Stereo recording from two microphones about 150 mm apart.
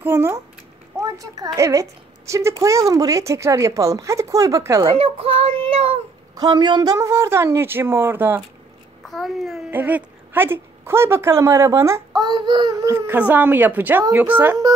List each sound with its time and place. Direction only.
0.0 s a woman's voice: 15° right (ahead or behind)
4.9 s child singing: 40° right (ahead or behind)
6.4 s speech: 30° right (ahead or behind); by 8.5 s 15° right (ahead or behind)
9.0 s a child's voice: centre (ahead or behind)
9.7 s a woman's voice: 10° right (ahead or behind); by 12.9 s 30° right (ahead or behind)
12.9 s speech: 10° right (ahead or behind)